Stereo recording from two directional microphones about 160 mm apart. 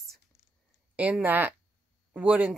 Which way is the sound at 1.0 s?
10° right (ahead or behind).